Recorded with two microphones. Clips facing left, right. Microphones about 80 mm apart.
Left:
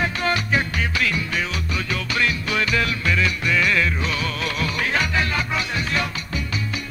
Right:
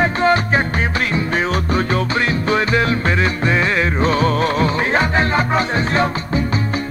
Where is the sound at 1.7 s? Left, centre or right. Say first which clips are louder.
Right 8 dB; right.